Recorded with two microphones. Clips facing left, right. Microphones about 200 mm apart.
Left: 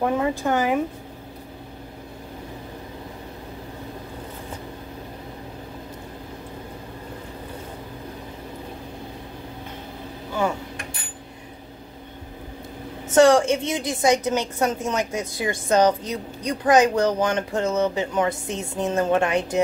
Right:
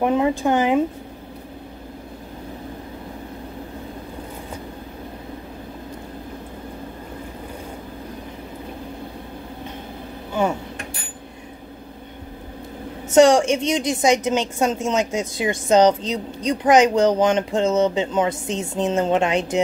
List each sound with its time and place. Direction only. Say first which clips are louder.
0.0 s speech: right 4 dB; 20° right (ahead or behind)
13.1 s speech: right 2 dB; 20° right (ahead or behind)